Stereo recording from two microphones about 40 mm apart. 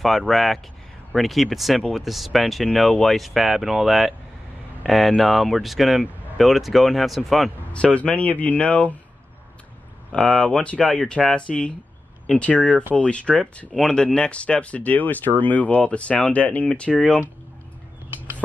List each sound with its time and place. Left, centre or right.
0.0 s speech: centre
3.3 s speech: centre
7.7 s speech: left
10.3 s speech: left
15.8 s speech: left